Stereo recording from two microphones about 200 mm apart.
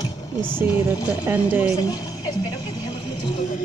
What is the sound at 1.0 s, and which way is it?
Speech, 10° right (ahead or behind).